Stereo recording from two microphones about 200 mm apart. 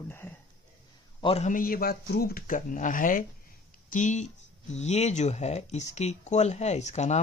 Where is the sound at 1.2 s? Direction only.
30° left (ahead or behind).